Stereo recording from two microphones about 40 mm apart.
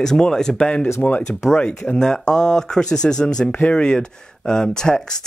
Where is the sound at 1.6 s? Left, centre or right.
Left.